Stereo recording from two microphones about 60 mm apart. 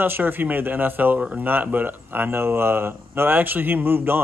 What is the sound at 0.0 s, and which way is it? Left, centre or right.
Speech, right.